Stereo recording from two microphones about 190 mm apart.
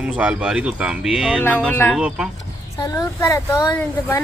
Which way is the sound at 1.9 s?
5° right (ahead or behind).